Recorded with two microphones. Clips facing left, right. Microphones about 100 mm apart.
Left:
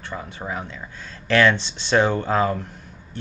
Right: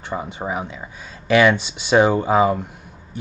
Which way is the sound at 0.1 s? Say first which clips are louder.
Right 5 dB; 20° right (ahead or behind).